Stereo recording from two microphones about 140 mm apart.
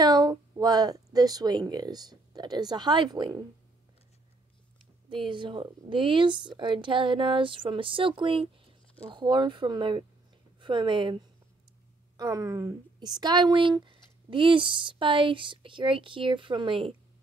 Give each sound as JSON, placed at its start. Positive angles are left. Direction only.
{"t": 0.0, "sound": "speech", "side_deg": -30}
{"t": 5.1, "sound": "a woman's voice", "side_deg": -35}